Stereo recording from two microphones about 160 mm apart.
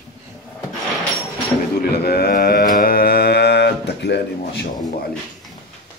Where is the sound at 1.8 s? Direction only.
75° left (ahead or behind).